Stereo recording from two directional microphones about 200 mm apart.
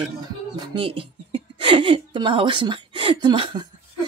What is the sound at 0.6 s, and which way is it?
A woman's voice, 25° right (ahead or behind).